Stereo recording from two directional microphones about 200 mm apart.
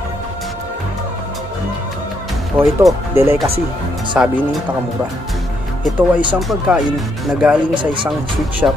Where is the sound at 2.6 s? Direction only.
10° right (ahead or behind).